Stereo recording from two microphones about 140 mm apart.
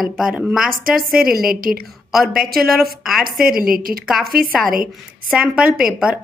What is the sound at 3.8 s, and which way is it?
Speech, 90° right.